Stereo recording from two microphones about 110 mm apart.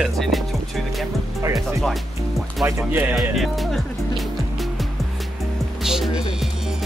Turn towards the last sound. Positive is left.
turn(degrees=-5)  # may be behind; listen again after turning